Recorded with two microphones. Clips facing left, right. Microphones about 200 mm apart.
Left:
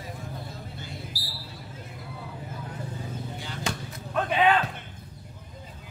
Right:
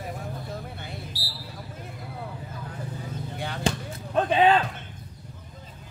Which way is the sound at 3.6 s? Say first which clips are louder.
Right 6 dB; 30° right (ahead or behind).